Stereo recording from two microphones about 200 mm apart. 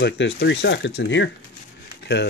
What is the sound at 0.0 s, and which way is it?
Speech, 60° left (ahead or behind).